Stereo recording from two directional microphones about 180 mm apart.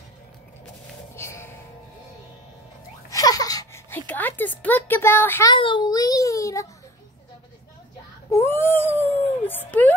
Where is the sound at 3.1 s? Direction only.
20° left (ahead or behind).